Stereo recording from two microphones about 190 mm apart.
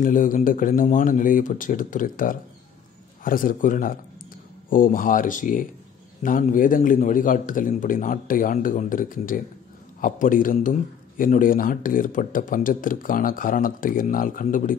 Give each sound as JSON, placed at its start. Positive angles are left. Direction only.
{"t": 0.0, "sound": "a man's voice", "side_deg": 45}